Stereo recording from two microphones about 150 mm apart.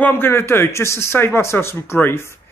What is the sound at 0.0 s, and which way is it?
Speech, 15° left (ahead or behind).